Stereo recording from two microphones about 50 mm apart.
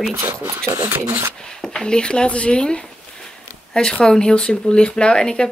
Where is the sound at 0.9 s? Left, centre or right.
Right.